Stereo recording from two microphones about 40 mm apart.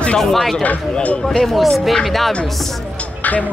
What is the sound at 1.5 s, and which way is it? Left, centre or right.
Speech, centre.